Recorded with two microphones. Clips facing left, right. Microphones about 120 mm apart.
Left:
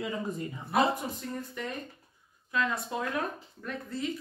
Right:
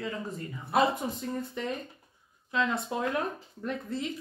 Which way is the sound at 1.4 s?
20° right (ahead or behind).